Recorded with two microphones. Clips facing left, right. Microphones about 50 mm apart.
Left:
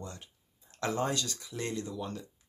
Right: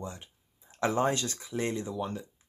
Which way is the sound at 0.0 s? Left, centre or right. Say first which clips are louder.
Right 4 dB; centre.